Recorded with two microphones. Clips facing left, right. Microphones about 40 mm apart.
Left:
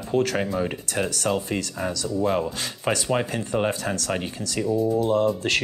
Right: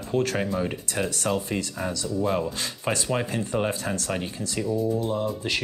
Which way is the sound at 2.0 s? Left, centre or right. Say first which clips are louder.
Left 2 dB; centre.